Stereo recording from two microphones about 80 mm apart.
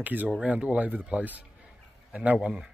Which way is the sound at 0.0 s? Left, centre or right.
Right.